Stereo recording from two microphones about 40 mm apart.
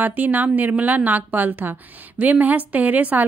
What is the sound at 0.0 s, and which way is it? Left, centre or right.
A woman's voice, right.